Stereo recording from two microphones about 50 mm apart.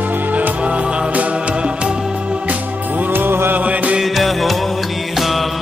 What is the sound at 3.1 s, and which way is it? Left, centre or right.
Music, right.